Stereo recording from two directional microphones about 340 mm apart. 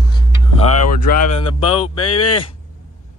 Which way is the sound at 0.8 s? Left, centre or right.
Left.